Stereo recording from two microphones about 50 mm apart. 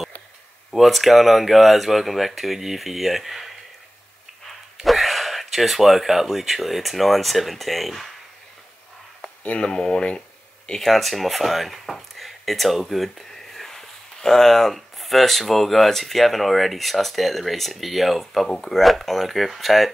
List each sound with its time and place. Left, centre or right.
0.7 s speech: centre
4.7 s speech: centre
9.6 s speech: centre
10.7 s speech: centre